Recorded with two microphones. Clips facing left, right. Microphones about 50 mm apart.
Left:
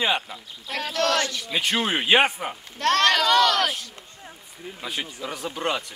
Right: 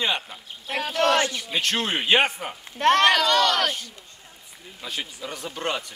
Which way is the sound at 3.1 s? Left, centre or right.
Centre.